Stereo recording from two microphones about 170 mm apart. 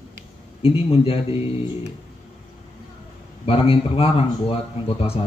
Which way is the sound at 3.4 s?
35° left (ahead or behind).